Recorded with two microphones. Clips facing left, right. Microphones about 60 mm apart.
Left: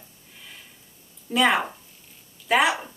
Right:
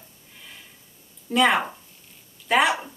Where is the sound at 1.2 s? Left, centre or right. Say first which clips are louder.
Right 1 dB; centre.